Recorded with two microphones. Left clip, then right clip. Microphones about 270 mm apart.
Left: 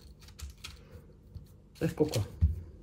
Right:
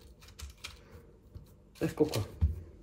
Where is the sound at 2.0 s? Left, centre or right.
Centre.